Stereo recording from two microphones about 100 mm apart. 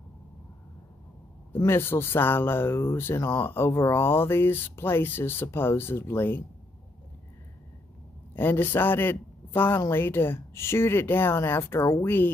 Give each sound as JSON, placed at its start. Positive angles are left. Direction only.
{"t": 1.6, "sound": "speech", "side_deg": 25}
{"t": 8.4, "sound": "speech", "side_deg": 20}